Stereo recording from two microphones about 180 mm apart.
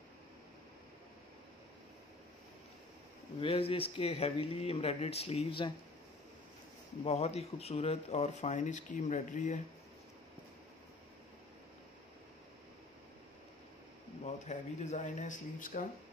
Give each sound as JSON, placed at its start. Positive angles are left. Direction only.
{"t": 3.3, "sound": "speech", "side_deg": 30}
{"t": 7.1, "sound": "speech", "side_deg": 35}
{"t": 14.2, "sound": "speech", "side_deg": 40}